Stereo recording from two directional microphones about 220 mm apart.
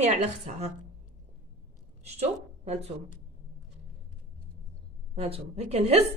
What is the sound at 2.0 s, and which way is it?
Speech, 30° right (ahead or behind).